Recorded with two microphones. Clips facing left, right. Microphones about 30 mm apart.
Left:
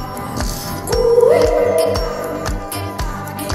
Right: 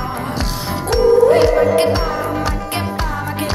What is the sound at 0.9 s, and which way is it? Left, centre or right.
Music, right.